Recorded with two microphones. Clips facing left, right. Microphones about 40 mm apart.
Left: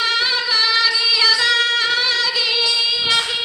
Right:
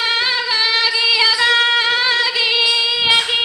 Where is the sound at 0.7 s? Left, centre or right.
Right.